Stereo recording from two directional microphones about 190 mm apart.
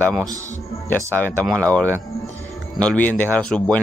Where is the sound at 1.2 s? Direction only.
10° left (ahead or behind).